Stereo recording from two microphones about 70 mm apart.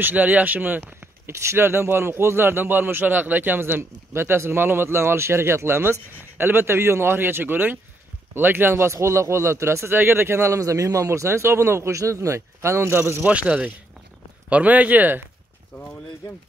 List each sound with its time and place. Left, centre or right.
0.0 s speech: right
1.3 s a man's voice: right
13.2 s speech: centre